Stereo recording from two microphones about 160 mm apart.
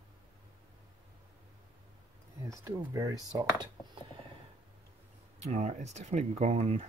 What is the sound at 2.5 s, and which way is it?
Speech, 20° right (ahead or behind).